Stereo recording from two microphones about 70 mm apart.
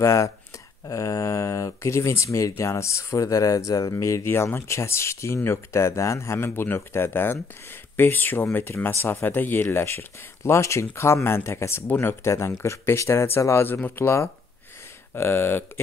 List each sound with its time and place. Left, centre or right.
0.0 s speech: left
4.2 s speech: left
12.3 s speech: left